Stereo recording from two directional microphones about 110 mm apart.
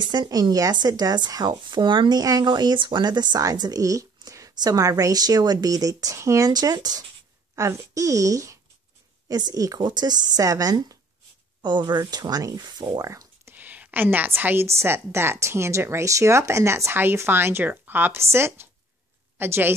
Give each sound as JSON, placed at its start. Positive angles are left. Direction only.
{"t": 0.0, "sound": "speech", "side_deg": -40}
{"t": 13.6, "sound": "a woman's voice", "side_deg": -15}